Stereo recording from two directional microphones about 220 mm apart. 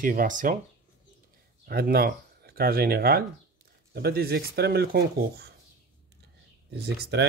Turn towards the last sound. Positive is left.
turn(degrees=-45)  # may be behind; listen again after turning